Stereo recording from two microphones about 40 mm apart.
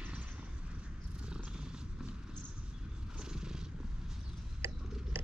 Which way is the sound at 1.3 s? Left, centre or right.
Right.